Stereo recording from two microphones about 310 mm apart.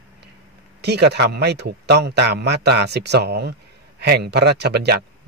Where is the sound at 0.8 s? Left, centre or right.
Right.